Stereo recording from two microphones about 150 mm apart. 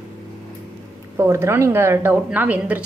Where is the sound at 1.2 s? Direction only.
15° right (ahead or behind).